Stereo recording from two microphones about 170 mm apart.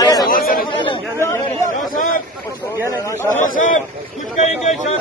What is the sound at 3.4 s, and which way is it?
Speech, 50° left (ahead or behind).